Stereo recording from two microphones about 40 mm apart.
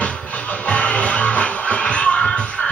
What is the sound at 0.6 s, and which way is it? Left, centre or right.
Music, left.